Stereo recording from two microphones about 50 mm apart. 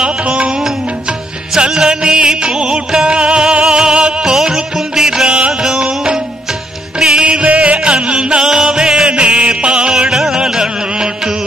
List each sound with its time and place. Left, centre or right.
0.0 s music: right
0.5 s music: centre